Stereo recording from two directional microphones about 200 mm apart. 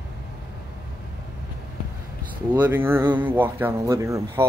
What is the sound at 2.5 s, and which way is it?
Speech, 15° right (ahead or behind).